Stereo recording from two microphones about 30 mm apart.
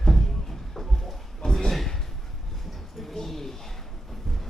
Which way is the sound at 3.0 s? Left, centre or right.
Centre.